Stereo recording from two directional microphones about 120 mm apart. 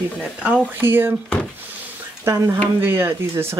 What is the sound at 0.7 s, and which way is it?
Speech, 20° right (ahead or behind).